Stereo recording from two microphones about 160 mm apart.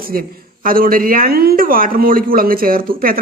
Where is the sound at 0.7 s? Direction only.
65° right (ahead or behind).